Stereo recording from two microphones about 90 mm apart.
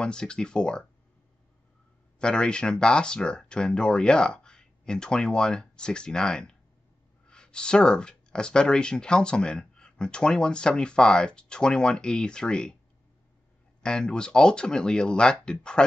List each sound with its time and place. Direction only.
0.0 s speech: 10° left (ahead or behind)
2.1 s speech: 10° left (ahead or behind)
13.8 s speech: 10° left (ahead or behind)